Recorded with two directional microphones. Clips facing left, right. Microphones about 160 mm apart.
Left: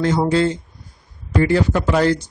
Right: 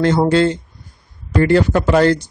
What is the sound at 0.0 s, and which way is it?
A man's voice, 70° right (ahead or behind).